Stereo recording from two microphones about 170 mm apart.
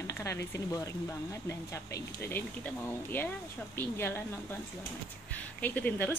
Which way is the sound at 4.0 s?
15° left (ahead or behind).